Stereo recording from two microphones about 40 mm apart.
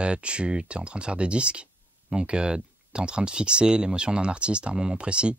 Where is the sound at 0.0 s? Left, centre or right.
Right.